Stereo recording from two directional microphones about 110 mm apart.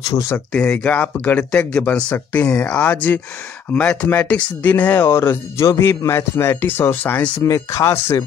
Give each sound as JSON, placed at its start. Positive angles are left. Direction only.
{"t": 0.1, "sound": "speech", "side_deg": 30}
{"t": 0.5, "sound": "speech", "side_deg": 10}
{"t": 7.4, "sound": "speech", "side_deg": 30}